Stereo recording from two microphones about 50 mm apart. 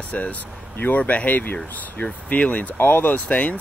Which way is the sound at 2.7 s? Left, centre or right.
Left.